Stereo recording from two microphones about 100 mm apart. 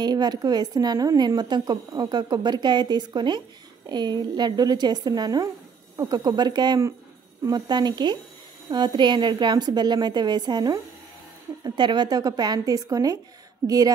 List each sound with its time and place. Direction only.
0.0 s a woman's voice: 45° right (ahead or behind)